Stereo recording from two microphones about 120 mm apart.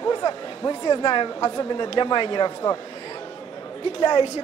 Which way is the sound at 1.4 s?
30° left (ahead or behind).